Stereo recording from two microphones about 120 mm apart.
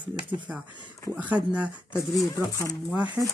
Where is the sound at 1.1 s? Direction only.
10° right (ahead or behind).